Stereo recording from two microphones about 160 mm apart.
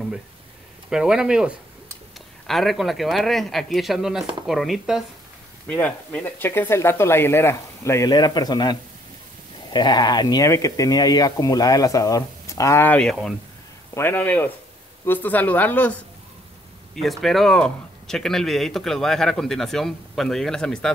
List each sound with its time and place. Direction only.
0.8 s speech: 5° right (ahead or behind)
5.7 s speech: 10° left (ahead or behind)